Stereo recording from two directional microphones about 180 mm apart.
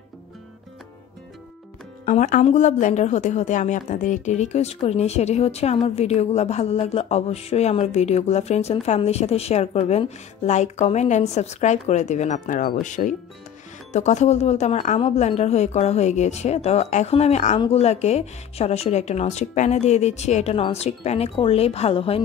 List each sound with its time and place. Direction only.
2.0 s a woman's voice: 45° left (ahead or behind)